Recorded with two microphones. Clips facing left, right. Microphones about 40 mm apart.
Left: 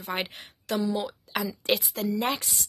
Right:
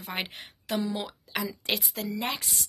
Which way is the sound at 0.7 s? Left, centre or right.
Right.